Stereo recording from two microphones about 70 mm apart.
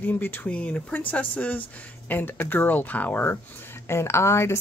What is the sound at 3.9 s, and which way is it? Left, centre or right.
Speech, left.